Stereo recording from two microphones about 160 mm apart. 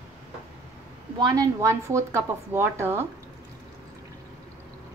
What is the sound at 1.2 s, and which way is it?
Speech, 20° right (ahead or behind).